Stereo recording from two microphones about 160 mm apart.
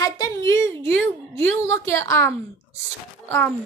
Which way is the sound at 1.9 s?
15° left (ahead or behind).